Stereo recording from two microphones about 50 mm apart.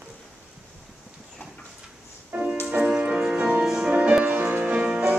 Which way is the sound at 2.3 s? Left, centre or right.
Right.